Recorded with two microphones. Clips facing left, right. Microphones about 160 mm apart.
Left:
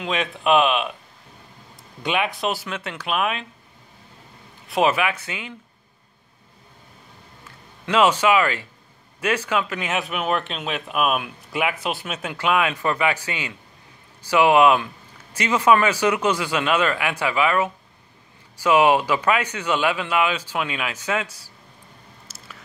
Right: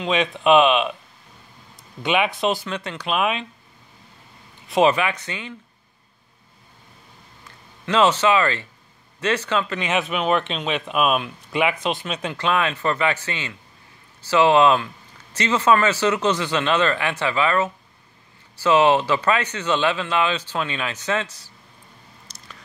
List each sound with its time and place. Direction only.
0.0 s speech: centre (ahead or behind)
2.0 s speech: centre (ahead or behind)
4.6 s speech: centre (ahead or behind)
7.8 s speech: 10° left (ahead or behind)
22.3 s biting: 5° left (ahead or behind)